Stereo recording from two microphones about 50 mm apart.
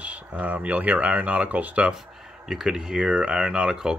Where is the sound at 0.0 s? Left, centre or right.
Right.